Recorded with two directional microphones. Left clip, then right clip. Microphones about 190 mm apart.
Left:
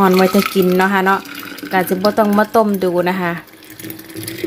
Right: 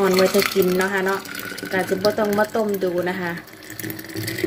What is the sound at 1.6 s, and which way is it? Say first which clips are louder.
Speech: left 5 dB; 60° left (ahead or behind).